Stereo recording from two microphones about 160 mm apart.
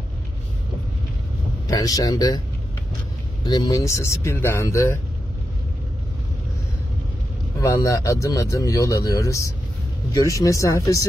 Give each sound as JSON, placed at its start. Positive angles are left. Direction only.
{"t": 1.7, "sound": "speech", "side_deg": 25}
{"t": 3.4, "sound": "speech", "side_deg": 25}
{"t": 7.6, "sound": "speech", "side_deg": 20}